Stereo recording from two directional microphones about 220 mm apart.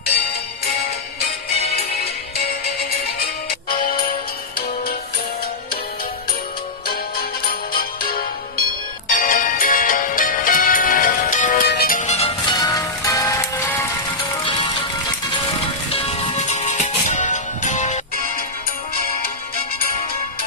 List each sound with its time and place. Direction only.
2.3 s music: 45° left (ahead or behind)
7.7 s music: 40° left (ahead or behind); by 13.8 s 10° left (ahead or behind)
14.3 s music: 20° left (ahead or behind)
15.9 s music: 25° left (ahead or behind)